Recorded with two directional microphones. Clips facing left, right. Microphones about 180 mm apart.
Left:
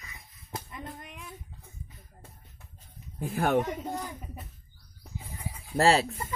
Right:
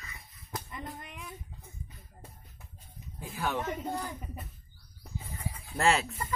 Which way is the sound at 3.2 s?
55° left (ahead or behind).